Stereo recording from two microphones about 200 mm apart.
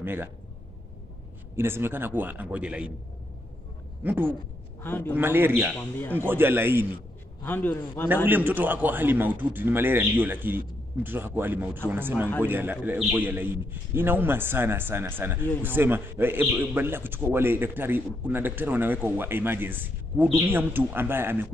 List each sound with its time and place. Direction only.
0.0 s speech: 10° right (ahead or behind)
1.6 s a man's voice: 10° right (ahead or behind)
4.0 s a man's voice: 10° right (ahead or behind)
4.8 s a man's voice: 10° left (ahead or behind)
5.1 s a man's voice: 10° right (ahead or behind)
5.8 s a man's voice: 10° left (ahead or behind)
6.1 s a man's voice: 10° right (ahead or behind)
7.4 s a man's voice: 10° left (ahead or behind)
8.3 s a man's voice: 10° right (ahead or behind)